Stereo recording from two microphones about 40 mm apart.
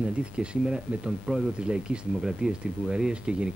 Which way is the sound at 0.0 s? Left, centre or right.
Right.